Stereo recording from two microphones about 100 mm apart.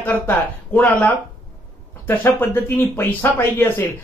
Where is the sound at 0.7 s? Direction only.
15° left (ahead or behind).